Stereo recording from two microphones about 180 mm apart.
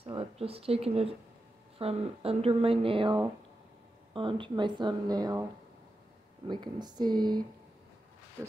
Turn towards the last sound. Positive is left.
turn(degrees=-25)  # may be behind; listen again after turning